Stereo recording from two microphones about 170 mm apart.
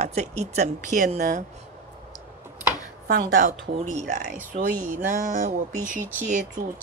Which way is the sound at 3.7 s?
45° right (ahead or behind).